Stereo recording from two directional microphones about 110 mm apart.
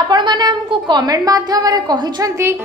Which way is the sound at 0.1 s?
40° right (ahead or behind).